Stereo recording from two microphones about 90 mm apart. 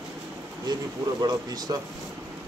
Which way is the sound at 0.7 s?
50° right (ahead or behind).